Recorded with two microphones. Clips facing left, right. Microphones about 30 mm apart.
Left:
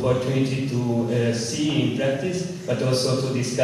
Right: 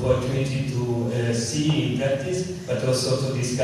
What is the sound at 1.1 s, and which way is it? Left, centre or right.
Mantra, left.